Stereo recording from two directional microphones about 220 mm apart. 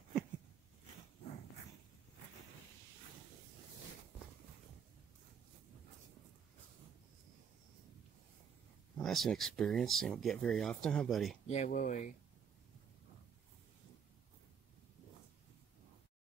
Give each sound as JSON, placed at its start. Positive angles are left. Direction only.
{"t": 8.9, "sound": "speech", "side_deg": 0}
{"t": 11.4, "sound": "speech", "side_deg": 30}